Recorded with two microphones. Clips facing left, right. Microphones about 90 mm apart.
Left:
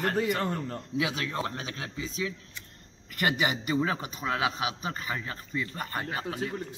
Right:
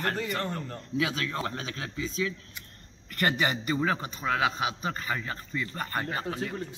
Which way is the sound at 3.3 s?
10° left (ahead or behind).